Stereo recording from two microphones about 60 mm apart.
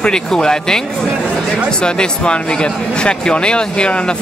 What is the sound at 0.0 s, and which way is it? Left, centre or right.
Speech, centre.